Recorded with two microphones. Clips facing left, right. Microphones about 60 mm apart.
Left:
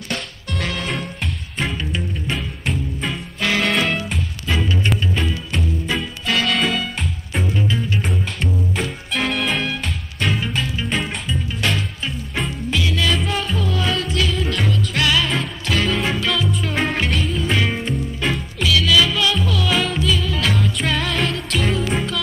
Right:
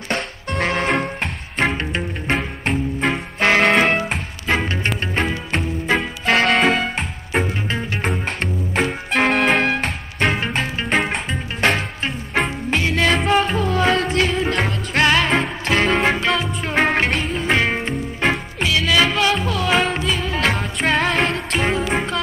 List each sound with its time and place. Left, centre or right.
0.1 s music: right
18.2 s music: right
18.6 s music: right